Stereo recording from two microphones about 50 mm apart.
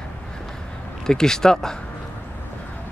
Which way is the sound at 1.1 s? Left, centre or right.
Centre.